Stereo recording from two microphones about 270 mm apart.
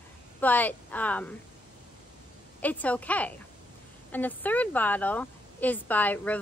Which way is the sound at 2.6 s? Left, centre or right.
Centre.